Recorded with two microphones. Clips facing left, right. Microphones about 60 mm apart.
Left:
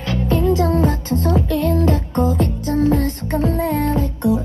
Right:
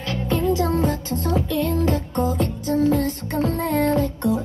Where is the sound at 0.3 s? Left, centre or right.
Left.